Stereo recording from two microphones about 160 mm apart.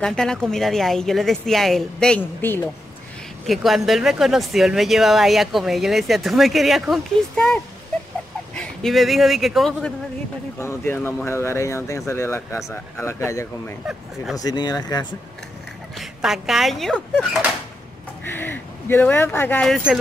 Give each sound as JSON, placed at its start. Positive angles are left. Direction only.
{"t": 0.0, "sound": "speech", "side_deg": 5}
{"t": 3.4, "sound": "speech", "side_deg": 0}
{"t": 16.0, "sound": "speech", "side_deg": 0}
{"t": 18.2, "sound": "speech", "side_deg": 15}